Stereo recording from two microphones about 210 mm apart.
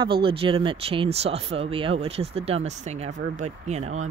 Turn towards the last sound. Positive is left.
turn(degrees=-30)  # may be behind; listen again after turning